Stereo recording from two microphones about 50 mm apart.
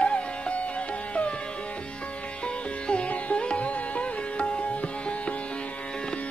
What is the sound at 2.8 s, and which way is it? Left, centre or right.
Sitar, left.